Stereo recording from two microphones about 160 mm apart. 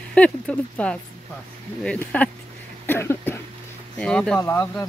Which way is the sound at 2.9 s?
15° left (ahead or behind).